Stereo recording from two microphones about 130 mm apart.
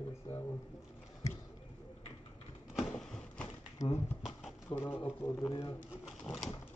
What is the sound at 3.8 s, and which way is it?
Speech, 65° left (ahead or behind).